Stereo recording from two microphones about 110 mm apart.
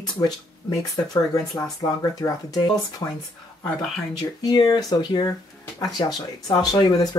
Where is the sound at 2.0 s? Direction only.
35° left (ahead or behind).